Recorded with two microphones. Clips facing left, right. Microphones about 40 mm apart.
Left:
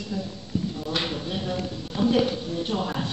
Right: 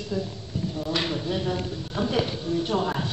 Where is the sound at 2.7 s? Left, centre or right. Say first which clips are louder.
Right 2 dB; centre.